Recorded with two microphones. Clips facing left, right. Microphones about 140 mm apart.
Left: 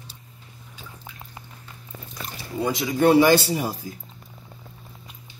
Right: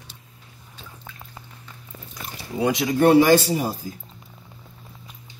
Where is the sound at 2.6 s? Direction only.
80° right.